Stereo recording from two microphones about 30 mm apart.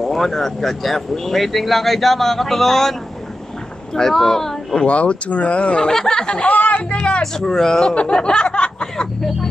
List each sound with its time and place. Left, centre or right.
0.0 s speech: centre
4.8 s speech: left
5.8 s speech: left
6.4 s speech: left
7.3 s speech: centre
7.9 s a sound: left